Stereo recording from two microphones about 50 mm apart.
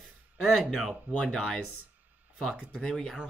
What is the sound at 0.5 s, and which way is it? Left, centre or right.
Speech, centre.